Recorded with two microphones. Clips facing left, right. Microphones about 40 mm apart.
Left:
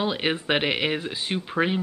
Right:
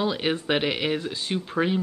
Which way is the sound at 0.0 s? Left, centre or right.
Left.